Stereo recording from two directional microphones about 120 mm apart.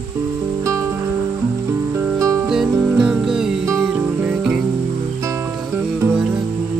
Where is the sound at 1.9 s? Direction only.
25° right (ahead or behind).